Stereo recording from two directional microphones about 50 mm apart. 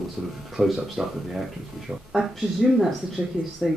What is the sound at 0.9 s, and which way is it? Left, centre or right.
Speech, centre.